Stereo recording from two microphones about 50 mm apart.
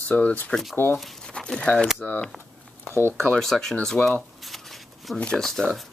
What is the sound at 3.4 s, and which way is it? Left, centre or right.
Speech, centre.